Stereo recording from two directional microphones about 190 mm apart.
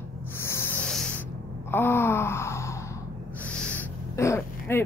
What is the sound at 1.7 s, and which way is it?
Wail, 10° left (ahead or behind).